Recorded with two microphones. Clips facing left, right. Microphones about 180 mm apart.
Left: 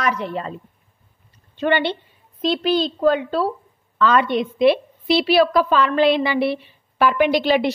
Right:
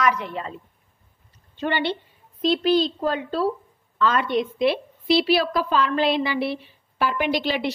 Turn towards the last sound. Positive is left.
turn(degrees=60)  # may be behind; listen again after turning